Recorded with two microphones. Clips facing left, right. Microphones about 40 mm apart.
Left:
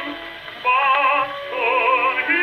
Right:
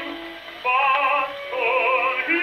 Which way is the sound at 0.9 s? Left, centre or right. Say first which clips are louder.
Left 3 dB; left.